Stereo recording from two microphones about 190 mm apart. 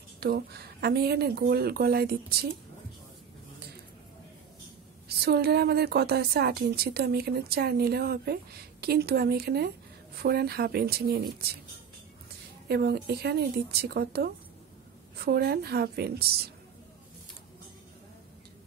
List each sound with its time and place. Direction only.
0.2 s a woman's voice: 55° right (ahead or behind)
5.0 s a woman's voice: 60° right (ahead or behind)
12.6 s a woman's voice: 55° right (ahead or behind)